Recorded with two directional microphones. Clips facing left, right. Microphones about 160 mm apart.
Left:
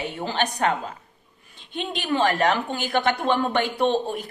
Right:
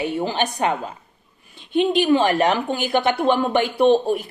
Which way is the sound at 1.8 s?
15° right (ahead or behind).